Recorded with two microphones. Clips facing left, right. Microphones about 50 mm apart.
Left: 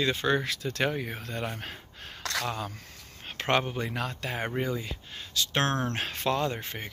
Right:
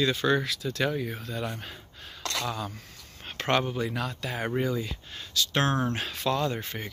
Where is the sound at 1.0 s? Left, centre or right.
Left.